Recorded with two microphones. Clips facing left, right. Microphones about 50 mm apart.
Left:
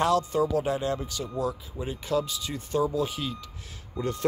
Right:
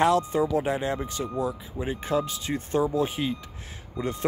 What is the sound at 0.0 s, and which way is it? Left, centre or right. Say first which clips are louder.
Speech: right 2 dB; right.